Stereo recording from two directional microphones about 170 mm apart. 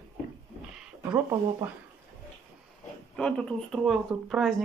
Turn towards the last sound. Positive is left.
turn(degrees=0)  # may be behind; listen again after turning